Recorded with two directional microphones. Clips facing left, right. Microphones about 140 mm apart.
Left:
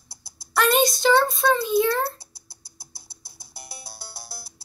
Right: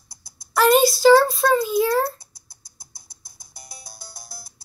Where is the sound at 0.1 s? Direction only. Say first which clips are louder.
Left 2 dB; 30° left (ahead or behind).